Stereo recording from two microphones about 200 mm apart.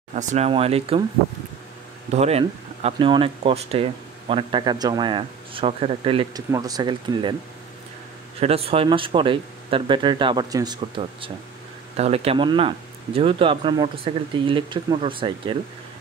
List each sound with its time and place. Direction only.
0.1 s speech: 35° right (ahead or behind)
2.0 s speech: 30° right (ahead or behind)
8.4 s speech: 30° right (ahead or behind)